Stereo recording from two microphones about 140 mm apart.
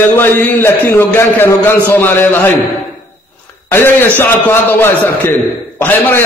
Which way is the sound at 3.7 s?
15° left (ahead or behind).